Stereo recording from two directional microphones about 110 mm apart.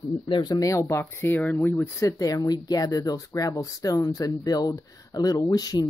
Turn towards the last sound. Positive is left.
turn(degrees=40)  # may be behind; listen again after turning